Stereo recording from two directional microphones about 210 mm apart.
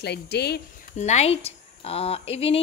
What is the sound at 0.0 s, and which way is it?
Speech, 50° left (ahead or behind).